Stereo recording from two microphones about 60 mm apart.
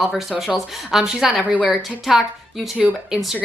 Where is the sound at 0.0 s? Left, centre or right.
Centre.